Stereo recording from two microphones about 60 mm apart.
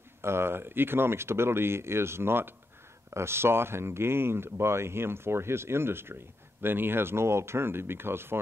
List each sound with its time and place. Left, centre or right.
0.2 s speech: right